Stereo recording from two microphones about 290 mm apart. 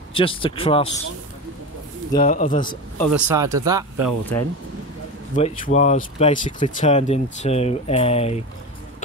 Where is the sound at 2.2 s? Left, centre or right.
Left.